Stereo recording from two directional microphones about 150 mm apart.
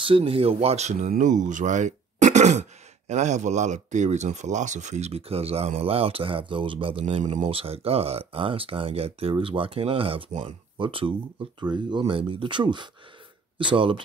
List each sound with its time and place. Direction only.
0.0 s speech: 40° right (ahead or behind)